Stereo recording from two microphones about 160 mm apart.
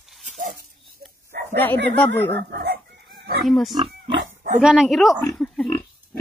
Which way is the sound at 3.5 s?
Centre (ahead or behind).